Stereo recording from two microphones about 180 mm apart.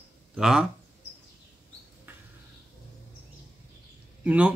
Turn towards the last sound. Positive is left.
turn(degrees=-10)  # may be behind; listen again after turning